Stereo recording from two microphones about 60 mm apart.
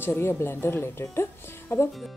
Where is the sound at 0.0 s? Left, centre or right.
Left.